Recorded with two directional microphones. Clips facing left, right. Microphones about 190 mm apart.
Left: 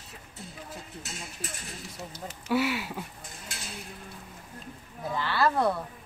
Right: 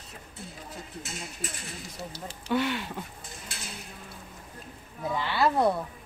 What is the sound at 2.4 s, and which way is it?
Speech, 5° left (ahead or behind).